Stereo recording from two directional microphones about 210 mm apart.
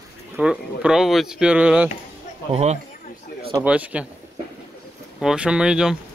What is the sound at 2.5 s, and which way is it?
Speech, 30° right (ahead or behind).